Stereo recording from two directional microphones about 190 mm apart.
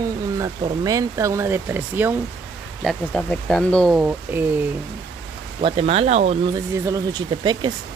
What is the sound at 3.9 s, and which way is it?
Speech, 10° right (ahead or behind).